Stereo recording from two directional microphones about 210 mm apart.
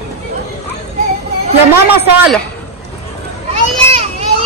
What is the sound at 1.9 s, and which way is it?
Speech, 10° right (ahead or behind).